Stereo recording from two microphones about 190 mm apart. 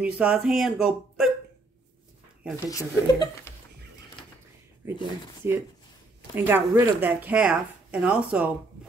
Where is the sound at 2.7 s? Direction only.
15° left (ahead or behind).